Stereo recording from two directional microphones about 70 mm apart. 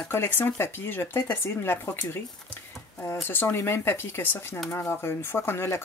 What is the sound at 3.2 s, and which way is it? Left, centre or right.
Speech, left.